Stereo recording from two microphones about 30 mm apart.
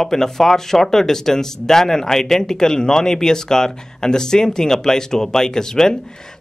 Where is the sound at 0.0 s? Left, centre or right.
Centre.